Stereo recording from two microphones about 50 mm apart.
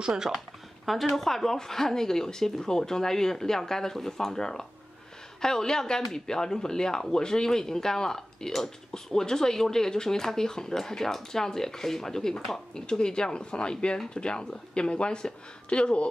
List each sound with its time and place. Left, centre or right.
0.1 s speech: centre; by 16.1 s left